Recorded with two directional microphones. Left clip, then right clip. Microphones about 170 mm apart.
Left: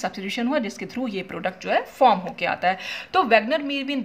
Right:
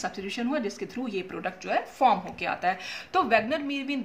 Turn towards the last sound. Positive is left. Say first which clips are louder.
# left 5 dB
turn(degrees=40)  # may be behind; listen again after turning